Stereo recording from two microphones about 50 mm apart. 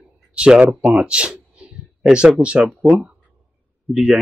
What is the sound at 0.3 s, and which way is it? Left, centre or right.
Speech, centre.